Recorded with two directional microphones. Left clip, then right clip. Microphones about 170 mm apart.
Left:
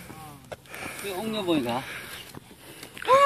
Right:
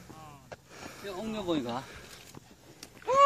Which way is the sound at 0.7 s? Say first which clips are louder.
Left 11 dB; 30° right (ahead or behind).